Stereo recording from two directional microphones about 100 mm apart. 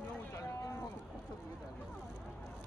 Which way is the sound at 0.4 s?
35° left (ahead or behind).